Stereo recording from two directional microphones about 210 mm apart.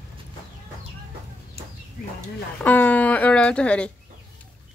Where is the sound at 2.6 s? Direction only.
10° left (ahead or behind).